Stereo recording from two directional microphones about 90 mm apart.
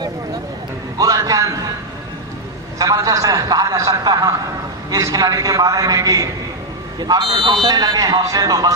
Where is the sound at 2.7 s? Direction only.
40° right (ahead or behind).